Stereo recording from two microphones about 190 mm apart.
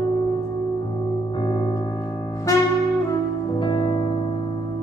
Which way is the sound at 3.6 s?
25° left (ahead or behind).